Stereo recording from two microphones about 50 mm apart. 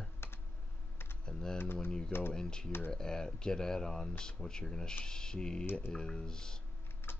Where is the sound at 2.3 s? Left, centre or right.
Centre.